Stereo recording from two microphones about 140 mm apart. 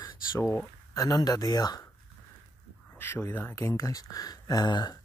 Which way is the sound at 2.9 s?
15° left (ahead or behind).